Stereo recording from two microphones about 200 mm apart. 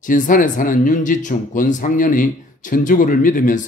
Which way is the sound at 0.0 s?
40° left (ahead or behind).